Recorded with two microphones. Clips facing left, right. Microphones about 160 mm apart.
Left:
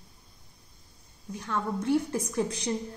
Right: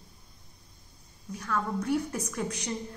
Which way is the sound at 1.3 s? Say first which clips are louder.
Even; 25° left (ahead or behind).